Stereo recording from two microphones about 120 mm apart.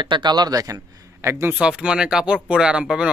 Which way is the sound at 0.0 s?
40° right (ahead or behind).